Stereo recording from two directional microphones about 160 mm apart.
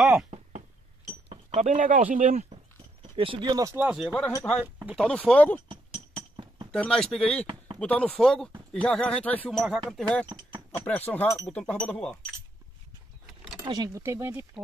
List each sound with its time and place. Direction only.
0.0 s a sound: 5° right (ahead or behind)
0.3 s chink: 40° right (ahead or behind); by 2.0 s 55° right (ahead or behind)
2.1 s speech: 50° right (ahead or behind)
3.2 s speech: 30° right (ahead or behind)
3.8 s speech: 5° right (ahead or behind)
4.3 s speech: 10° left (ahead or behind)
5.7 s chink: 30° right (ahead or behind)
6.7 s speech: 5° left (ahead or behind)
7.4 s a sound: 30° right (ahead or behind)
7.8 s speech: 10° left (ahead or behind)
11.1 s speech: 15° left (ahead or behind)
13.7 s speech: 20° right (ahead or behind)